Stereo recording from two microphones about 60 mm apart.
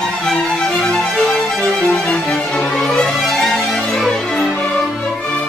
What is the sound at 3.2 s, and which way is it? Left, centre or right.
Music, centre.